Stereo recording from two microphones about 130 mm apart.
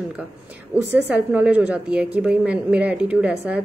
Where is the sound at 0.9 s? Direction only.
10° right (ahead or behind).